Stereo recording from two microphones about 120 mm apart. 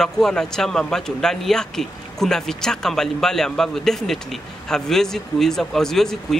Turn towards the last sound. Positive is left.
turn(degrees=5)  # may be behind; listen again after turning